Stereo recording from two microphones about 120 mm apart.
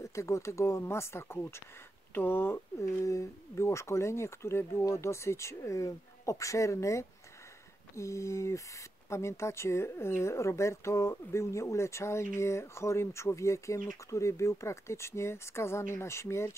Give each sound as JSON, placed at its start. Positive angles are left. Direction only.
{"t": 0.0, "sound": "speech", "side_deg": 25}